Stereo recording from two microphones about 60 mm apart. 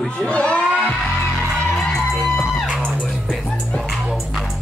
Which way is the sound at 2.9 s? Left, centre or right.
Centre.